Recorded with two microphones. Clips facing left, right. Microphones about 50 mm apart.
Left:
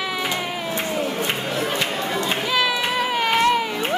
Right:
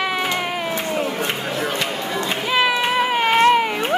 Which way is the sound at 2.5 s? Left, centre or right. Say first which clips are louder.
Right 5 dB; right.